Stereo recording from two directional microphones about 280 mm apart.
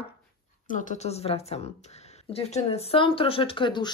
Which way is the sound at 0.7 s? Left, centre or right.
Left.